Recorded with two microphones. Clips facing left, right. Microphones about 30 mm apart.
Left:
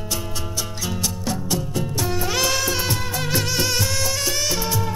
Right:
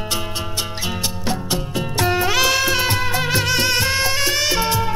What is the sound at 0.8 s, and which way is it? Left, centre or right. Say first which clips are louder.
Music: right 1 dB; right.